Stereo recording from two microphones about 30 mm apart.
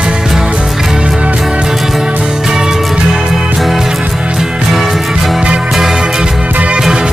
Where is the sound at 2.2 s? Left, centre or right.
Centre.